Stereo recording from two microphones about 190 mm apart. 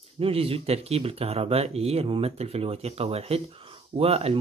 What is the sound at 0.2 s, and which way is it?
Speech, 30° right (ahead or behind).